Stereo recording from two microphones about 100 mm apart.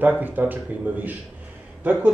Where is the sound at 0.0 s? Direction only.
20° right (ahead or behind).